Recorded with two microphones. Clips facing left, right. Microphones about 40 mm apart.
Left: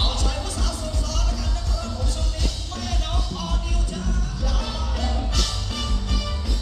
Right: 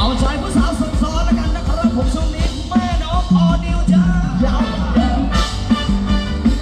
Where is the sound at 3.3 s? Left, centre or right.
Right.